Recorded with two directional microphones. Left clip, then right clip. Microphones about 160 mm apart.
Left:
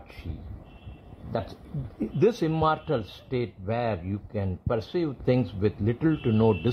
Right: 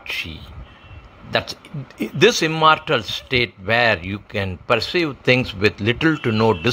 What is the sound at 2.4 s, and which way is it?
Speech, 45° right (ahead or behind).